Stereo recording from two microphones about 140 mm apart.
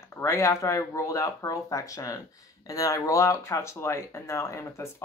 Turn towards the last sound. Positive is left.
turn(degrees=20)  # may be behind; listen again after turning